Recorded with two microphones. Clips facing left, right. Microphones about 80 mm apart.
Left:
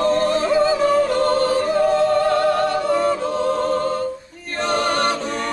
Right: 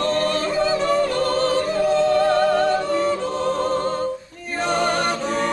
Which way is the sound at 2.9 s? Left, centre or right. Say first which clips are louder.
Left 2 dB; centre.